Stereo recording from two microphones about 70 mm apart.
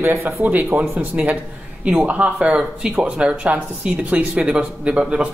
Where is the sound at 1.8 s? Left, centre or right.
Centre.